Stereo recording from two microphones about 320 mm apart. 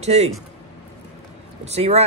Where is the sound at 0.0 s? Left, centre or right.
Right.